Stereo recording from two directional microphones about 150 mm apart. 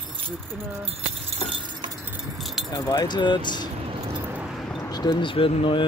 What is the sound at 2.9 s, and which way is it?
Speech, 30° left (ahead or behind).